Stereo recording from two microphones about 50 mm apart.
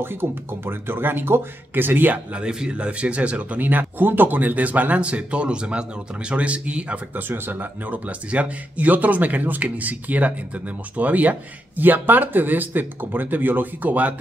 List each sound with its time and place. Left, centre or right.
0.0 s speech: right
2.3 s speech: right
7.2 s speech: right